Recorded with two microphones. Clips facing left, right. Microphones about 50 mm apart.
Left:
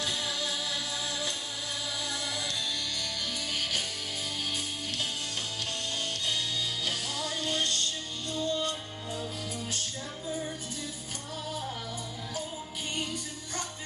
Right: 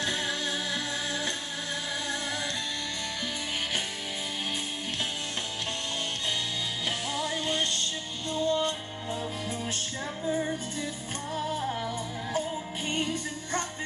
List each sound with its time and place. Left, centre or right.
0.0 s music: right
7.2 s music: right
12.9 s music: right